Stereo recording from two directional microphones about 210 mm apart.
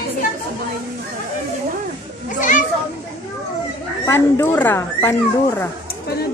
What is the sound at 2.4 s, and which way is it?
Speech, 40° left (ahead or behind).